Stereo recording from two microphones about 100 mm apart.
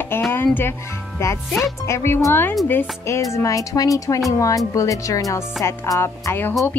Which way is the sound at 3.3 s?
35° left (ahead or behind).